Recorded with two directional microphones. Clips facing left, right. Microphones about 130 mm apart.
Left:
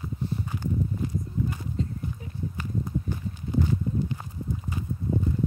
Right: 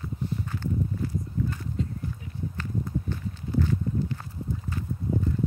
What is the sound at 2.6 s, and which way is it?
Walk, 15° left (ahead or behind).